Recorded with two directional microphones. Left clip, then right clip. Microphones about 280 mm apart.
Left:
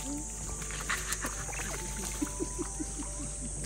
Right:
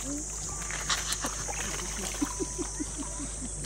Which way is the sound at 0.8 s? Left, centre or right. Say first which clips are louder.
Right 3 dB; centre.